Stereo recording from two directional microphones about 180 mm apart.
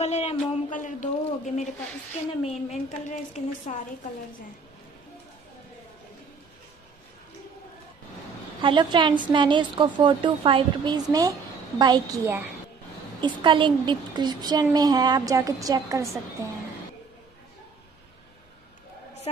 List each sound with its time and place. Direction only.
0.0 s a man's voice: 40° left (ahead or behind)
8.5 s a woman's voice: 25° right (ahead or behind)